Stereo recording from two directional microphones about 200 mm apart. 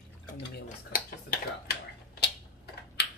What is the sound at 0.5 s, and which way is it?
Speech, 45° left (ahead or behind).